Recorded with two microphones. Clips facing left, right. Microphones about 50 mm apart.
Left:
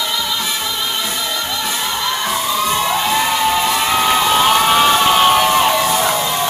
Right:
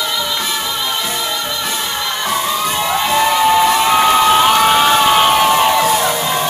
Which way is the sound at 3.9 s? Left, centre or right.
Centre.